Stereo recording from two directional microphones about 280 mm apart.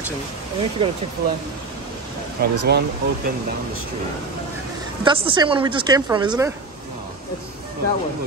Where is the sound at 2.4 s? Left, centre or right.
Right.